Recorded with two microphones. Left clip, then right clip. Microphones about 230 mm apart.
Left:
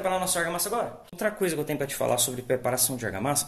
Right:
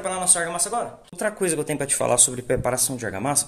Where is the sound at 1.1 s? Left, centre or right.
Centre.